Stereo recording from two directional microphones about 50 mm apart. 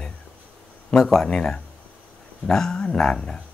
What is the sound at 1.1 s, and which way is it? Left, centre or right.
Speech, centre.